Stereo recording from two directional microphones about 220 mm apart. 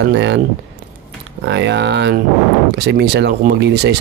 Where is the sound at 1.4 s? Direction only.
50° right (ahead or behind).